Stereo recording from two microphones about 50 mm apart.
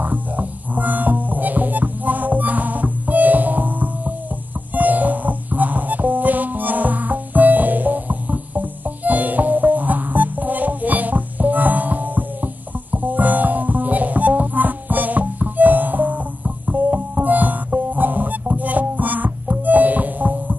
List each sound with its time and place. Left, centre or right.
0.0 s music: right